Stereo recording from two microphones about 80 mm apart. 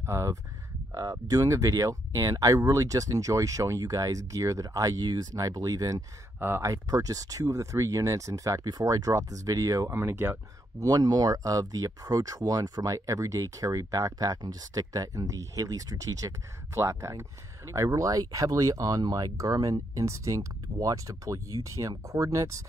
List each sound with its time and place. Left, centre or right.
0.0 s speech: right
0.9 s speech: right
6.4 s speech: right
6.7 s speech: right
9.9 s speech: right
10.8 s speech: right